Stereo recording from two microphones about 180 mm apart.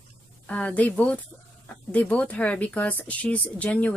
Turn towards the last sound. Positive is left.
turn(degrees=5)  # may be behind; listen again after turning